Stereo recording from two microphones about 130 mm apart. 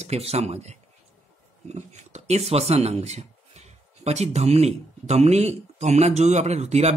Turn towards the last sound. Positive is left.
turn(degrees=-60)  # may be behind; listen again after turning